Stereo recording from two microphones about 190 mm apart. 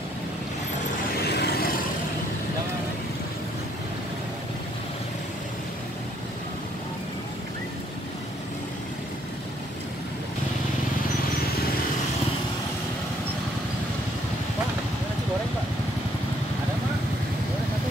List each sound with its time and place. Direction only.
1.2 s vehicle: 60° left (ahead or behind)